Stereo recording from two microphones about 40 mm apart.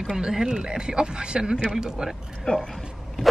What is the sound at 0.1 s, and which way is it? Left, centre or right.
Speech, centre.